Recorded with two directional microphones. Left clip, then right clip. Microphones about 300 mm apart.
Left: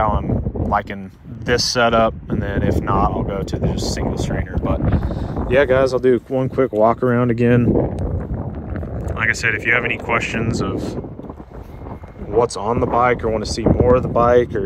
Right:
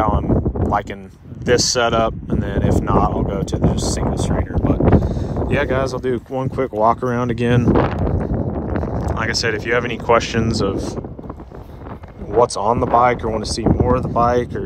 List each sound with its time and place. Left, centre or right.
0.0 s a sound: centre
1.4 s speech: right
9.1 s speech: centre
12.4 s speech: centre